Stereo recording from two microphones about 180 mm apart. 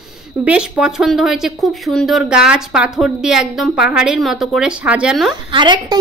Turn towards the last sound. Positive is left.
turn(degrees=-25)  # may be behind; listen again after turning